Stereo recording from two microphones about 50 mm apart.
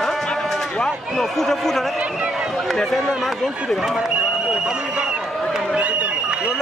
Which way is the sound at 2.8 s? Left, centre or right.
Centre.